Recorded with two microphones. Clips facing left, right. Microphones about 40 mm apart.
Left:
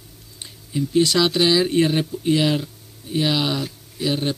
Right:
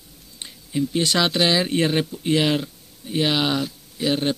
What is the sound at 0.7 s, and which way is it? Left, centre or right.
Speech, right.